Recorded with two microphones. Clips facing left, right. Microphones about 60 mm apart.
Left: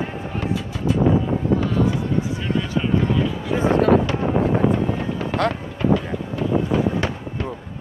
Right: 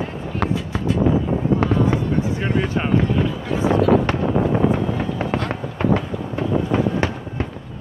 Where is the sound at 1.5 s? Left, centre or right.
Right.